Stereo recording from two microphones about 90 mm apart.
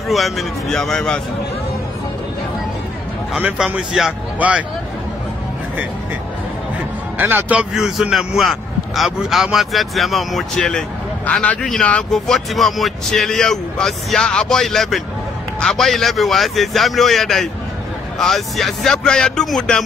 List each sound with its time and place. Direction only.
0.1 s speech: centre (ahead or behind)
3.4 s speech: 10° right (ahead or behind)
4.4 s speech: 15° right (ahead or behind)
7.2 s a man's voice: 20° right (ahead or behind)
7.7 s speech: 5° right (ahead or behind)
11.2 s a man's voice: 15° left (ahead or behind)